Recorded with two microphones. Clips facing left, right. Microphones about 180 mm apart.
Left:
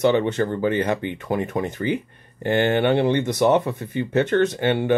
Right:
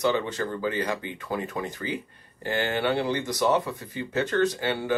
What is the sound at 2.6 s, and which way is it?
Speech, 60° left (ahead or behind).